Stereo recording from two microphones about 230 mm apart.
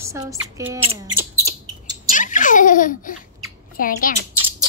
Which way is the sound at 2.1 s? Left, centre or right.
Left.